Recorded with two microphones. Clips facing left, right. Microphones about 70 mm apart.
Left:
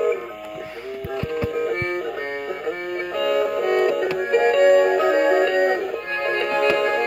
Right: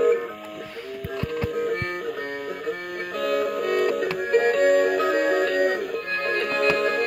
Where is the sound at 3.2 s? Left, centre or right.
Left.